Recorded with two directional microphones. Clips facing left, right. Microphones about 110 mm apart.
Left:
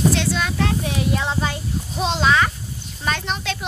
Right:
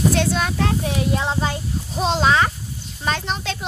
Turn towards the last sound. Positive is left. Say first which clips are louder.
# even
turn(degrees=-35)  # may be behind; listen again after turning